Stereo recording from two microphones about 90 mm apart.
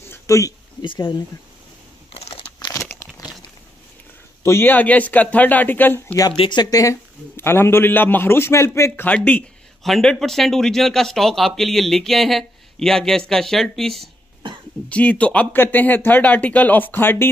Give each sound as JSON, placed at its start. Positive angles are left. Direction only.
{"t": 0.0, "sound": "a sound", "side_deg": 30}
{"t": 4.4, "sound": "speech", "side_deg": 30}
{"t": 6.5, "sound": "speech", "side_deg": 45}
{"t": 7.3, "sound": "speech", "side_deg": 25}
{"t": 9.0, "sound": "speech", "side_deg": 15}
{"t": 9.8, "sound": "speech", "side_deg": 0}
{"t": 14.9, "sound": "speech", "side_deg": 15}